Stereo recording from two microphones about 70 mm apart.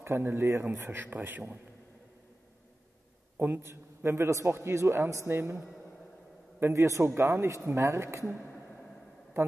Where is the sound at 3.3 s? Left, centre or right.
Right.